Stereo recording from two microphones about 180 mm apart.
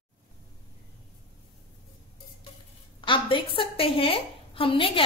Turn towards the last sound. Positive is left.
turn(degrees=30)  # may be behind; listen again after turning